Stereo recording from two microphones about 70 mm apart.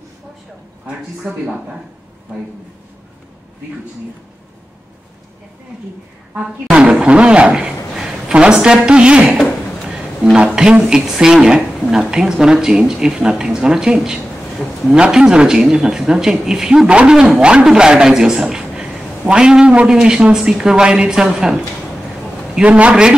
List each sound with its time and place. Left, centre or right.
0.8 s speech: centre
6.3 s a woman's voice: centre
15.0 s speech: centre
22.7 s speech: centre